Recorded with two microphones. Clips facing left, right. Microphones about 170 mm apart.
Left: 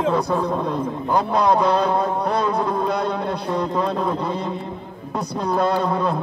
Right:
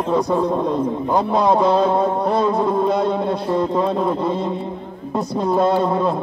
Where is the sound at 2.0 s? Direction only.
25° right (ahead or behind).